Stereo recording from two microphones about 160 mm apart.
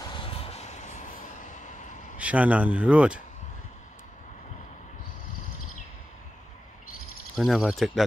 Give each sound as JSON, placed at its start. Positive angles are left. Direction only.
{"t": 0.1, "sound": "vehicle", "side_deg": 35}
{"t": 2.1, "sound": "speech", "side_deg": -10}
{"t": 7.3, "sound": "speech", "side_deg": 0}